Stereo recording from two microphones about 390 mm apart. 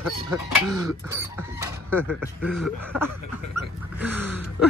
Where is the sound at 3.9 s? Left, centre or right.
Centre.